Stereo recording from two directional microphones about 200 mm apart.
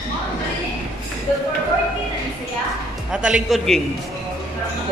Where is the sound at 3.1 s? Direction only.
5° right (ahead or behind).